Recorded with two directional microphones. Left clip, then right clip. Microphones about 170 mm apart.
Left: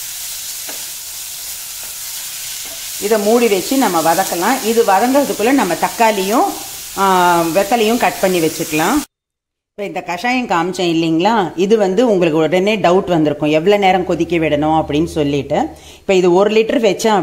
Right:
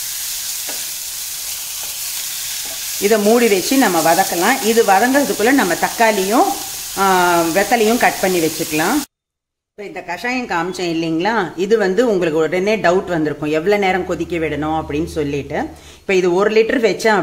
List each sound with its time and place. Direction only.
3.3 s speech: 10° right (ahead or behind); by 8.9 s 10° left (ahead or behind)
9.8 s speech: 40° left (ahead or behind); by 17.2 s 20° left (ahead or behind)